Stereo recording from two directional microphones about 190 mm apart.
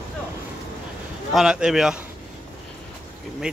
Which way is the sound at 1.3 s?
5° right (ahead or behind).